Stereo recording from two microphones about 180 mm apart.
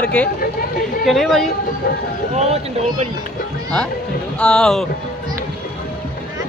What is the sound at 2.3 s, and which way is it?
Speech, 35° right (ahead or behind).